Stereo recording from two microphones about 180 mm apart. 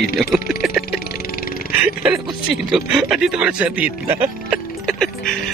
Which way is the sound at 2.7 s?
Centre (ahead or behind).